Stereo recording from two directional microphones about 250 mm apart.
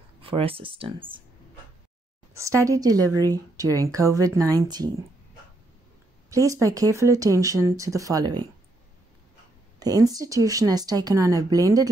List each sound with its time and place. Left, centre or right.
0.2 s speech: right
2.3 s speech: centre
6.3 s speech: centre
9.8 s speech: centre